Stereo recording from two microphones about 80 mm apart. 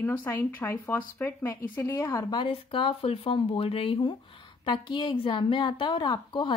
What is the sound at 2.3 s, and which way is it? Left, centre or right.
Speech, left.